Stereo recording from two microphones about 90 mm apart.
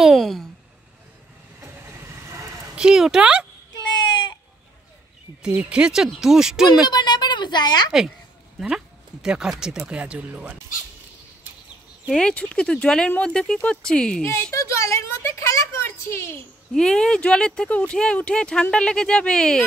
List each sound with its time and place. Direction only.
0.0 s speech: centre (ahead or behind)
1.6 s vehicle: 25° right (ahead or behind)
2.7 s speech: 10° right (ahead or behind)
3.7 s a sound: 50° left (ahead or behind)
5.4 s speech: 10° right (ahead or behind)
6.9 s a woman's voice: 50° left (ahead or behind)
8.5 s speech: 5° right (ahead or behind)
12.1 s speech: 10° left (ahead or behind)
14.5 s a sound: 35° left (ahead or behind)
16.7 s speech: 5° left (ahead or behind)